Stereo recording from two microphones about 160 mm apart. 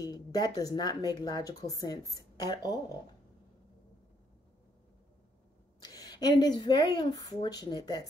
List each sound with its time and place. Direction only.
0.0 s speech: 25° left (ahead or behind)
5.8 s speech: 25° left (ahead or behind)